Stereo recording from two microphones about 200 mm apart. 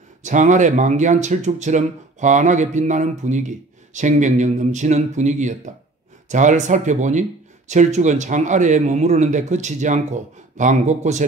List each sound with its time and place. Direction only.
0.2 s speech: 40° right (ahead or behind)